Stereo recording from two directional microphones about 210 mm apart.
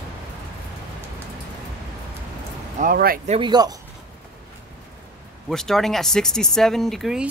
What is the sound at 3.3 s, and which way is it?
Speech, 20° right (ahead or behind).